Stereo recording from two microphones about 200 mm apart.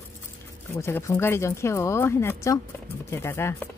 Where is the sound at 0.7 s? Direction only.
15° left (ahead or behind).